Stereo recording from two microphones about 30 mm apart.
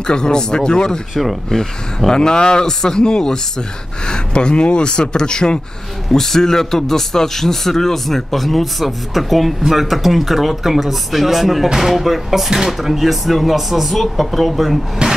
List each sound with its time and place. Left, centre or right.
0.0 s speech: left
2.1 s speech: left
6.1 s speech: centre
15.0 s rub: right